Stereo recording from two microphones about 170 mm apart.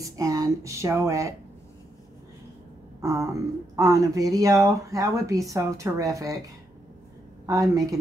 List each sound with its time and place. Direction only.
0.0 s speech: 20° right (ahead or behind)
3.0 s a sound: 15° right (ahead or behind)
3.7 s speech: 20° right (ahead or behind)
7.4 s speech: 20° right (ahead or behind)